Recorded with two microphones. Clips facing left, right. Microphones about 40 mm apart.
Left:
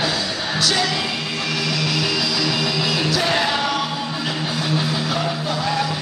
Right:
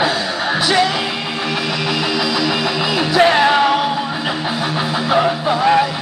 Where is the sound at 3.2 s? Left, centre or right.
Right.